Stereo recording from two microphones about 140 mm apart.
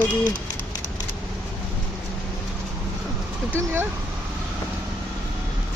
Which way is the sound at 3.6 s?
15° right (ahead or behind).